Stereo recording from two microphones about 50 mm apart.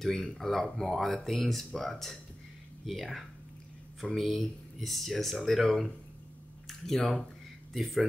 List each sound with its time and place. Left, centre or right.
0.0 s speech: centre
6.9 s speech: centre